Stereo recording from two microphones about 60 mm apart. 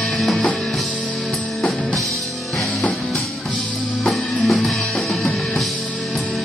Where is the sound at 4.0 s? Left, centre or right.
Centre.